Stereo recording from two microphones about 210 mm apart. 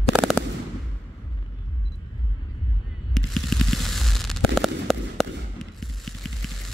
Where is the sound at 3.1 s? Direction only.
Centre (ahead or behind).